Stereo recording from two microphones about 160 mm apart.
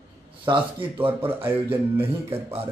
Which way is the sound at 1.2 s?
15° right (ahead or behind).